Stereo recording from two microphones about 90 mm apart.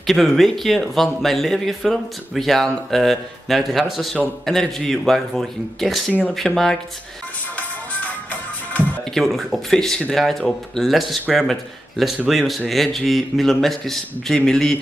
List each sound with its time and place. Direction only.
0.0 s speech: centre (ahead or behind)
7.5 s music: 15° left (ahead or behind)
9.1 s speech: centre (ahead or behind)
12.3 s speech: centre (ahead or behind)